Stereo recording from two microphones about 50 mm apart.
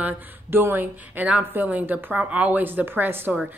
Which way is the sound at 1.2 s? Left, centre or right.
Right.